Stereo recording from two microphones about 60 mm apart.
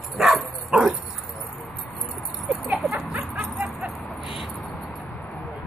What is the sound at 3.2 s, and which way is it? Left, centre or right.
Bow-wow, centre.